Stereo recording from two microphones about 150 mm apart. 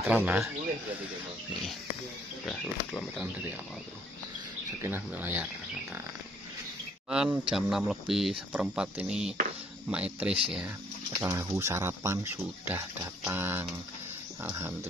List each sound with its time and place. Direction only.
0.1 s speech: 10° right (ahead or behind)
2.4 s speech: 5° left (ahead or behind)
4.8 s speech: 15° right (ahead or behind)
7.1 s speech: 5° right (ahead or behind)
11.1 s speech: 20° right (ahead or behind)